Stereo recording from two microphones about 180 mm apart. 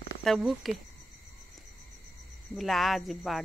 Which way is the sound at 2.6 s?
Centre (ahead or behind).